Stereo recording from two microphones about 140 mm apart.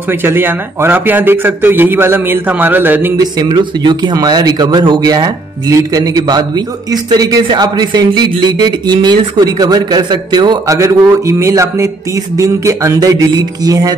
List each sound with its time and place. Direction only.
0.2 s a man's voice: 15° right (ahead or behind)
3.2 s speech: 30° right (ahead or behind)